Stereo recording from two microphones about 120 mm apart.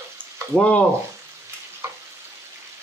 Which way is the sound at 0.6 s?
10° left (ahead or behind).